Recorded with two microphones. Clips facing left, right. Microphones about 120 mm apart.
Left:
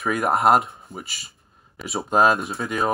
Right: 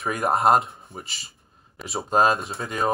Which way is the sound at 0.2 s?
5° left (ahead or behind).